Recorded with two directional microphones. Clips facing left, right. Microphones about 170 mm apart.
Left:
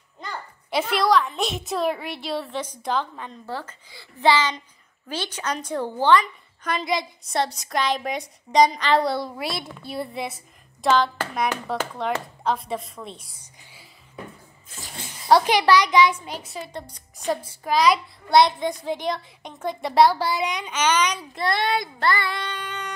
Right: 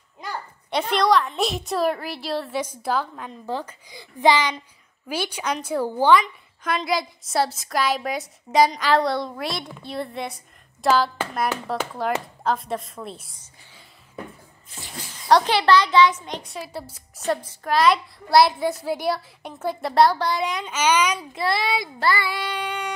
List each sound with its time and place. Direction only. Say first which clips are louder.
0.7 s a woman's voice: right 1 dB; 5° left (ahead or behind)
3.4 s a woman's voice: right 5 dB; 15° right (ahead or behind)
15.4 s a child's voice: even; 15° left (ahead or behind); by 17.4 s 5° right (ahead or behind)
17.4 s a child's voice: even; 10° left (ahead or behind); by 22.9 s 10° right (ahead or behind)